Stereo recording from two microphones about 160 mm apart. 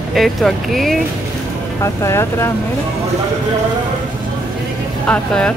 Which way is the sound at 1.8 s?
15° left (ahead or behind).